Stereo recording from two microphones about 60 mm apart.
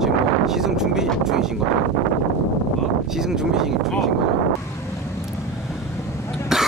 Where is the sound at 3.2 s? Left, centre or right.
Centre.